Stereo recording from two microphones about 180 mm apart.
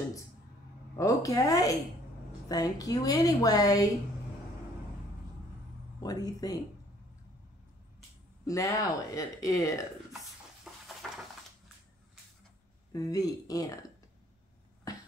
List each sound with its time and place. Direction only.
0.9 s a woman's voice: 20° left (ahead or behind)
5.9 s a woman's voice: 20° left (ahead or behind)
8.5 s a woman's voice: 20° left (ahead or behind)
10.1 s a sound: centre (ahead or behind)
12.9 s a woman's voice: 20° left (ahead or behind)
14.9 s beatboxing: 20° left (ahead or behind)